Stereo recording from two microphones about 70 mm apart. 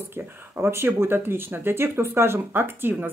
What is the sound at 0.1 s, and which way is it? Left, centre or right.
Speech, right.